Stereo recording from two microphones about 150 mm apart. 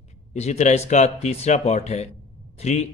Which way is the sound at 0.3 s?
50° left (ahead or behind).